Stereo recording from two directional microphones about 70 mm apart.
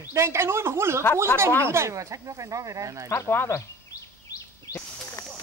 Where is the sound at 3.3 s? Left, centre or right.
Left.